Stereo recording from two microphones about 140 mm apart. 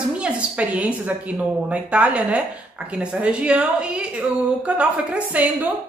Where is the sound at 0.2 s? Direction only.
10° right (ahead or behind).